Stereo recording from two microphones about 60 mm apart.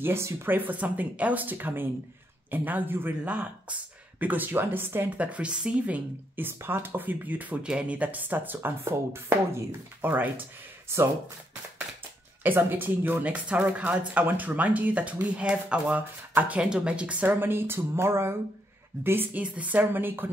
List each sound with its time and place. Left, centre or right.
0.0 s speech: right
5.1 s speech: right
6.4 s speech: right
7.6 s speech: centre
8.0 s speech: right
8.5 s speech: right
10.9 s speech: right
12.4 s speech: right
13.2 s speech: right
16.6 s speech: centre
17.3 s speech: right
19.3 s speech: right